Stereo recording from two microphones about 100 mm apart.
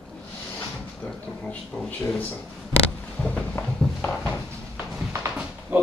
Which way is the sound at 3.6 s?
30° left (ahead or behind).